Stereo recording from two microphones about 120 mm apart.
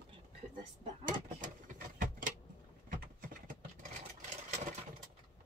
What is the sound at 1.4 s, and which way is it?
Vehicle, 90° right.